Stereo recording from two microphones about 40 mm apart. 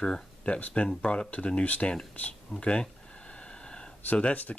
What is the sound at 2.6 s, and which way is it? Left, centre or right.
Speech, left.